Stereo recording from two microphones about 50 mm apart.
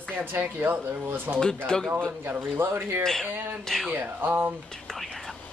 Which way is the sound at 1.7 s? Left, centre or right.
Centre.